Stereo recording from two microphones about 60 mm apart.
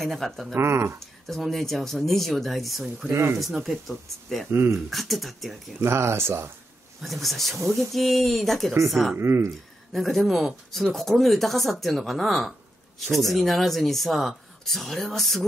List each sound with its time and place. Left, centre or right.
0.0 s speech: centre
0.6 s speech: right
1.2 s speech: centre
3.1 s speech: right
3.3 s speech: centre
4.5 s speech: right
4.7 s speech: centre
5.8 s speech: right
7.0 s speech: centre
9.1 s speech: right
9.9 s speech: centre